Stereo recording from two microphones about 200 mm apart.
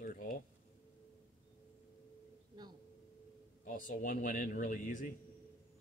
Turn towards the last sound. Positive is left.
turn(degrees=45)  # may be behind; listen again after turning